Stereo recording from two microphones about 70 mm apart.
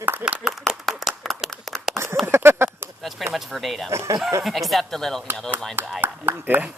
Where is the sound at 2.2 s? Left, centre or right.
Right.